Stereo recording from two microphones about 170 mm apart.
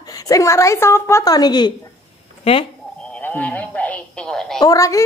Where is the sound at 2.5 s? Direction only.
35° left (ahead or behind).